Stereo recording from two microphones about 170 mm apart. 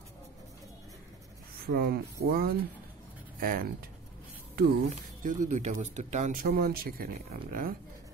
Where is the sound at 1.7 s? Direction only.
65° right (ahead or behind).